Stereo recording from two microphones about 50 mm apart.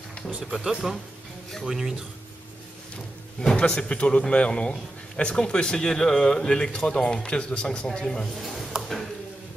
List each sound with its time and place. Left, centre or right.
0.4 s speech: centre
3.4 s speech: centre
8.7 s tick-tock: centre